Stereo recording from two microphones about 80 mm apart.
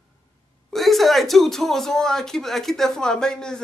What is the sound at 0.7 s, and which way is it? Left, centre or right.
Speech, centre.